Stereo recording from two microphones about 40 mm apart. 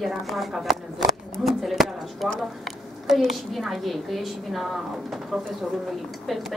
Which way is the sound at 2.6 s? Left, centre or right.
Centre.